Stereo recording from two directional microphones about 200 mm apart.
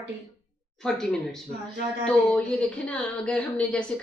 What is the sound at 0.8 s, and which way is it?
Speech, 5° left (ahead or behind).